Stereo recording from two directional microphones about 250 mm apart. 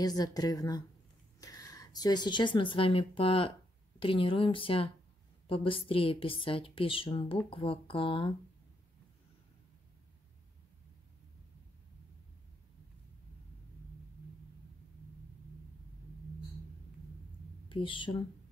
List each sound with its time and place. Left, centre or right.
0.0 s a woman's voice: centre
17.6 s speech: centre